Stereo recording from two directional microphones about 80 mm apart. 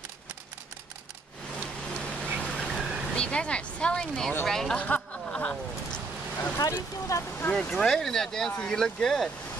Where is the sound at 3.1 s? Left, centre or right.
Centre.